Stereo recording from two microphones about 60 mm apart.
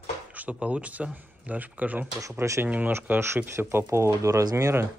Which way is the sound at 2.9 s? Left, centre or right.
Right.